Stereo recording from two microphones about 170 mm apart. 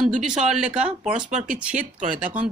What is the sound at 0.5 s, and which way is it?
Speech, 5° right (ahead or behind).